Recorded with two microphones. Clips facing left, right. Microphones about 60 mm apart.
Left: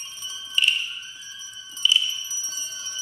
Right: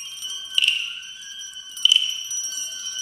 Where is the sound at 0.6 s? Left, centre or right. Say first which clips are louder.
Even; left.